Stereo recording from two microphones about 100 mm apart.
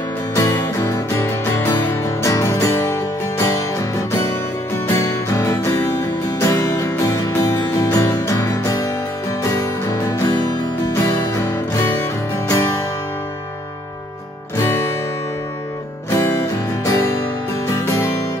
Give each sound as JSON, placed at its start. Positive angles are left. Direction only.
{"t": 0.4, "sound": "music", "side_deg": 30}
{"t": 4.8, "sound": "music", "side_deg": 30}
{"t": 12.4, "sound": "music", "side_deg": 35}
{"t": 14.6, "sound": "music", "side_deg": 25}
{"t": 16.1, "sound": "music", "side_deg": 25}